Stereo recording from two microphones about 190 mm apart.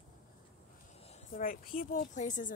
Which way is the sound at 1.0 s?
45° left (ahead or behind).